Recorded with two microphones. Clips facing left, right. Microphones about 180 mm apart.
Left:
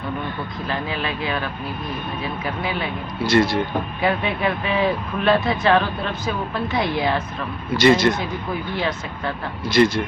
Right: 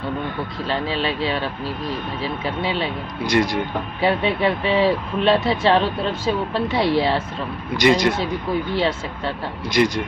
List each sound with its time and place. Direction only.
0.7 s speech: 30° right (ahead or behind)
3.3 s speech: 15° right (ahead or behind)
4.0 s speech: 30° right (ahead or behind)
7.7 s speech: 15° right (ahead or behind)
8.7 s speech: 30° right (ahead or behind)
9.7 s speech: 15° right (ahead or behind)